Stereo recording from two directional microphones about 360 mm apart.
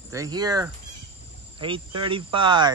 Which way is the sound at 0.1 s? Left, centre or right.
Centre.